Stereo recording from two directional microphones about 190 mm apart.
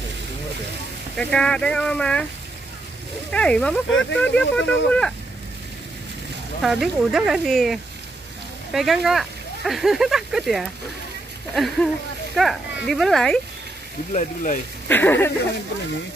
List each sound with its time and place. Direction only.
1.1 s speech: 5° left (ahead or behind)
3.3 s speech: 5° left (ahead or behind)
6.6 s speech: centre (ahead or behind)
14.1 s speech: 45° left (ahead or behind)
14.9 s speech: 10° left (ahead or behind)